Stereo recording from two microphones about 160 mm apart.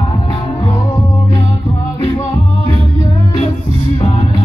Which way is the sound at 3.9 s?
40° left (ahead or behind).